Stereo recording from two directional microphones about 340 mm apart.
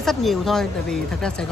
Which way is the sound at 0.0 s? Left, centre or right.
Centre.